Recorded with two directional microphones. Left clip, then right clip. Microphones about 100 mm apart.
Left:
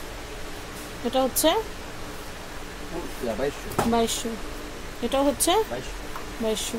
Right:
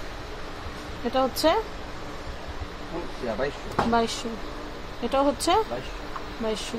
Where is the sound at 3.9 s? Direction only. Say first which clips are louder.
Left 1 dB; 50° left (ahead or behind).